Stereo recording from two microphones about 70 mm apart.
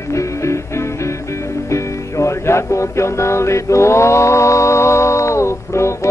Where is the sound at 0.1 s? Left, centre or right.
Left.